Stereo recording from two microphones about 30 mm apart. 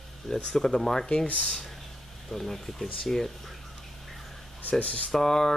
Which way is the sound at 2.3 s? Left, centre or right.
Centre.